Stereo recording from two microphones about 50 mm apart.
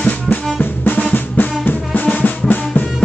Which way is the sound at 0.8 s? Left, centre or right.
Left.